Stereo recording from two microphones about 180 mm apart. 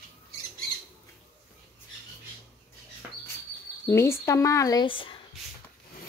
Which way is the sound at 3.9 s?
15° left (ahead or behind).